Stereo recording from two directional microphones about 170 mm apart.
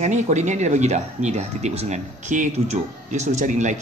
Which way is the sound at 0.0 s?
45° right (ahead or behind).